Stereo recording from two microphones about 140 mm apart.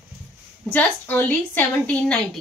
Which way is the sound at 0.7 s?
10° left (ahead or behind).